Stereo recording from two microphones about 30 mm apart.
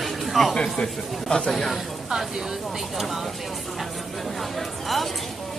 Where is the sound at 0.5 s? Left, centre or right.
Left.